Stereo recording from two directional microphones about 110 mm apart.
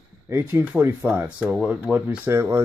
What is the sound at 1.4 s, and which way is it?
Speech, 10° right (ahead or behind).